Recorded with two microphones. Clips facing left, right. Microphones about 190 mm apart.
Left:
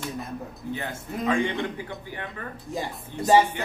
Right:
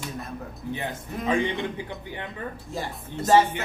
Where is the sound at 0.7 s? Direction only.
20° right (ahead or behind).